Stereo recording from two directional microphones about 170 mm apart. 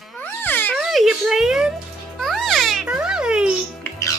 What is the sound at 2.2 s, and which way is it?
Music, centre (ahead or behind).